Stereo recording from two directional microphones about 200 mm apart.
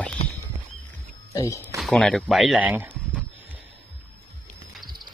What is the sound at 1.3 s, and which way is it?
Speech, 15° left (ahead or behind).